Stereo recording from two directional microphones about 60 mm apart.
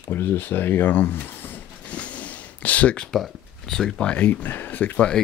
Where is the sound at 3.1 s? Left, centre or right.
Centre.